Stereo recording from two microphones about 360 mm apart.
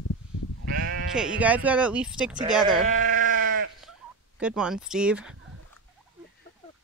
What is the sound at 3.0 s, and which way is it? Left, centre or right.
Sheep, right.